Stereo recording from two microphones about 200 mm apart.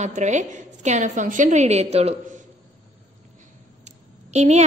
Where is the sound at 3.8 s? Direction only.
35° right (ahead or behind).